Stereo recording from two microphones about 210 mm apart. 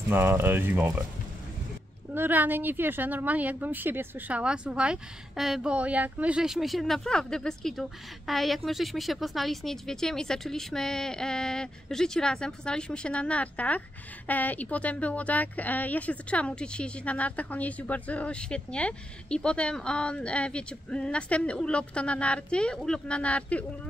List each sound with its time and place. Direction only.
0.1 s a woman's voice: 10° right (ahead or behind)
2.1 s a woman's voice: 10° right (ahead or behind)